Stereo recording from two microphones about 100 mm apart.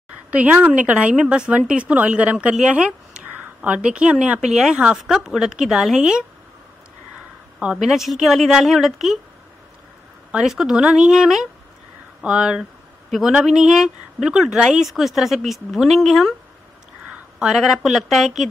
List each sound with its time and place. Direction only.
0.3 s speech: 15° right (ahead or behind)
7.5 s speech: 5° right (ahead or behind)
10.3 s speech: 5° right (ahead or behind)
17.0 s a sound: 15° right (ahead or behind)
17.5 s speech: centre (ahead or behind)